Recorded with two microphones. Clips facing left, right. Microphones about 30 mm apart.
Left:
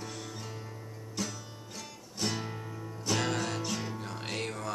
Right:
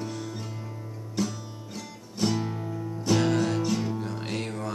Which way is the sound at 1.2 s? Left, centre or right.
Centre.